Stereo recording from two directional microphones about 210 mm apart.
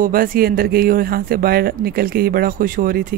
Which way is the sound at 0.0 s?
45° right (ahead or behind).